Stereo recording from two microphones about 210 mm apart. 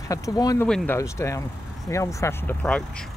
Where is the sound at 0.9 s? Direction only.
15° left (ahead or behind).